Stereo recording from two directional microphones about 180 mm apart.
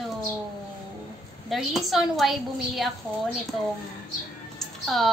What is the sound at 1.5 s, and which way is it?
A woman's voice, centre (ahead or behind).